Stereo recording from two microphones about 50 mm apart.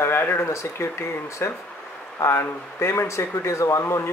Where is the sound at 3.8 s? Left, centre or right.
Left.